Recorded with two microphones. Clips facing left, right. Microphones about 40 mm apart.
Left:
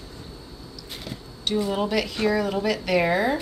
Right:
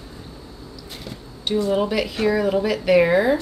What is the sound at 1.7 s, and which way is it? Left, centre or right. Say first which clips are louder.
A woman's voice: right 3 dB; centre.